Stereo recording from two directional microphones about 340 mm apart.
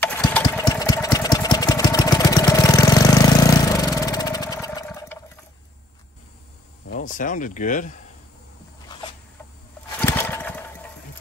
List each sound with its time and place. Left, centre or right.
0.0 s engine: centre
6.9 s speech: left
9.9 s lawn mower: centre